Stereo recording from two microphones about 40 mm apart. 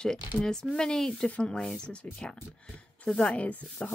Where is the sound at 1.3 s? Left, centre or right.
Left.